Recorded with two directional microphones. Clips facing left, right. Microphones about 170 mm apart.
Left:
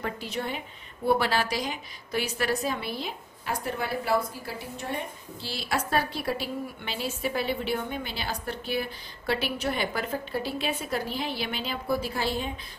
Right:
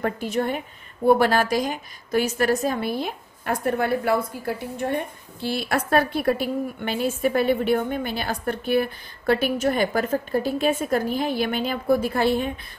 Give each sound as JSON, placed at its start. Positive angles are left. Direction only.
{"t": 0.0, "sound": "a woman's voice", "side_deg": -50}